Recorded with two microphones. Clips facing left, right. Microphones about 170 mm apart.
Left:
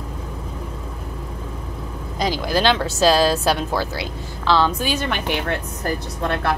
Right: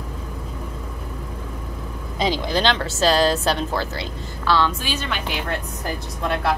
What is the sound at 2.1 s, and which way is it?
Vehicle, 25° right (ahead or behind).